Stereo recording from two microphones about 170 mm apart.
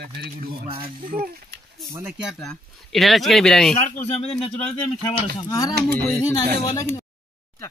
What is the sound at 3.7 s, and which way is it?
Speech, 40° left (ahead or behind).